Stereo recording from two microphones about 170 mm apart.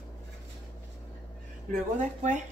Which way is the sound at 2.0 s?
45° right (ahead or behind).